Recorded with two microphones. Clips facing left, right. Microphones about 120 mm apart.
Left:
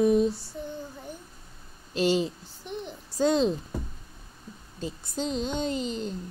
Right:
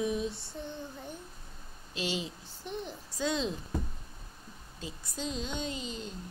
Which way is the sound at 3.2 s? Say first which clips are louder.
Left 9 dB; 45° left (ahead or behind).